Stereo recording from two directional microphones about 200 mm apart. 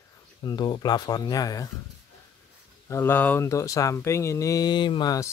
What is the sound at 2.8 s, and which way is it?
Speech, 10° left (ahead or behind).